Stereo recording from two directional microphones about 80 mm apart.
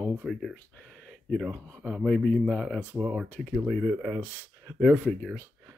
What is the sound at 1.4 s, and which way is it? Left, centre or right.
Speech, centre.